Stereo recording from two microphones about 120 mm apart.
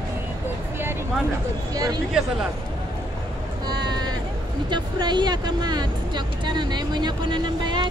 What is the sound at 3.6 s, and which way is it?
Sheep, 35° right (ahead or behind).